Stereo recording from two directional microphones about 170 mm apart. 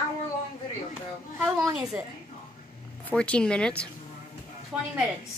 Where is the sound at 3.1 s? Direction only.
5° left (ahead or behind).